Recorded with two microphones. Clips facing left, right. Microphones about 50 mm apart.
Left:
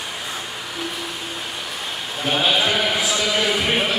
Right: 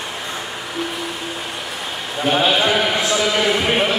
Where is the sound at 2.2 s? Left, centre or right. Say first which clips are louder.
Right 3 dB; centre.